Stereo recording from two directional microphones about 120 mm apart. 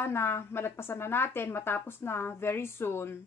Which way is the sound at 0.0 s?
20° left (ahead or behind).